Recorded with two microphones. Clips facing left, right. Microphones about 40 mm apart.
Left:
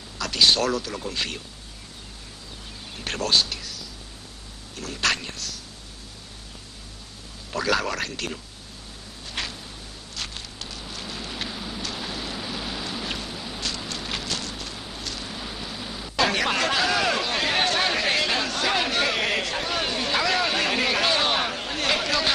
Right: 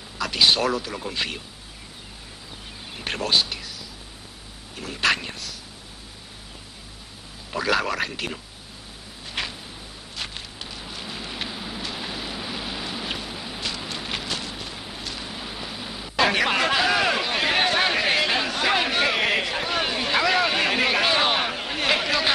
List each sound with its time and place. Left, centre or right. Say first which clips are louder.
0.2 s speech: right 1 dB; centre
3.0 s speech: even; centre
7.5 s speech: right 1 dB; centre
9.3 s a sound: right 2 dB; centre
10.1 s rain on surface: right 1 dB; centre